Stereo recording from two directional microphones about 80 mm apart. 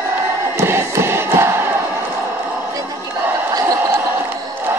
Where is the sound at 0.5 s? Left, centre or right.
Right.